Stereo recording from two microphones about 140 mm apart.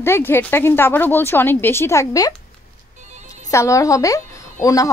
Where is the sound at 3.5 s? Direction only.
20° left (ahead or behind).